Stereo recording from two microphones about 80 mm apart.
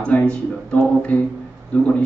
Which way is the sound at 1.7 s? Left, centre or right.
Centre.